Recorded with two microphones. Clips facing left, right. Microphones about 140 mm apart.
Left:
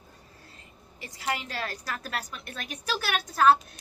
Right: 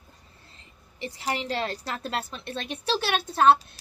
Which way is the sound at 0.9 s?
25° right (ahead or behind).